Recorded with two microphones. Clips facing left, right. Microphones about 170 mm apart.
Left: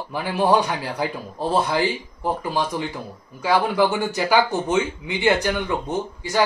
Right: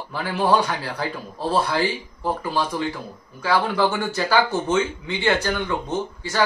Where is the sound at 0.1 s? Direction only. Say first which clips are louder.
Left 1 dB; 15° left (ahead or behind).